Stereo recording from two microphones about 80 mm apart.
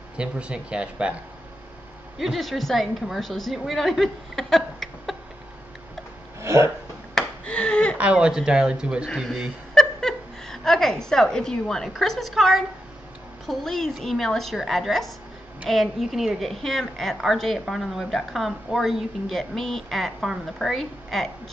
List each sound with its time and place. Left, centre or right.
0.2 s speech: centre
2.1 s a woman's voice: centre
6.4 s speech: right
7.2 s a sound: centre
8.0 s a woman's voice: centre